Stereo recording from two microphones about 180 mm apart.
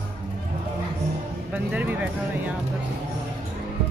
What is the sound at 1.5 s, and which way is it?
Speech, 10° right (ahead or behind).